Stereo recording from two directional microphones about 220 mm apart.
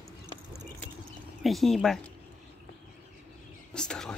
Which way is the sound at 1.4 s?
Centre (ahead or behind).